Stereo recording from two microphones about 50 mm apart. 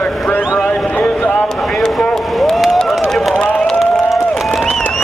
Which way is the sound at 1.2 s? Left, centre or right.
Left.